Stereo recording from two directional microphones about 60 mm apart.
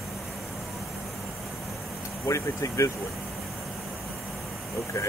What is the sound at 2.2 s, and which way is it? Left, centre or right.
Speech, left.